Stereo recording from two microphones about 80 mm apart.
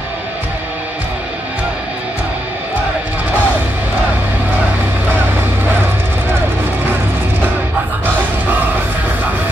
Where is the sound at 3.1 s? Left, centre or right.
Right.